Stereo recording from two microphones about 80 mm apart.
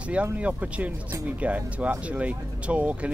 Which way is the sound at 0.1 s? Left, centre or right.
Centre.